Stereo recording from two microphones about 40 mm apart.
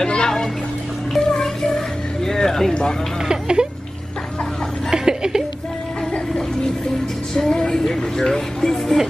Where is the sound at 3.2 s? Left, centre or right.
Centre.